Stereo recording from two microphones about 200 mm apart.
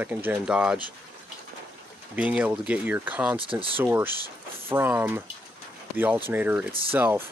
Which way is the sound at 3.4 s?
25° right (ahead or behind).